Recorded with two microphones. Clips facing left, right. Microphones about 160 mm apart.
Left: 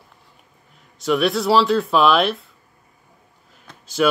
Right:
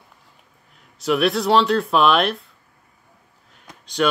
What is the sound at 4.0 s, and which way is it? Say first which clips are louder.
Speech: left 2 dB; 5° left (ahead or behind).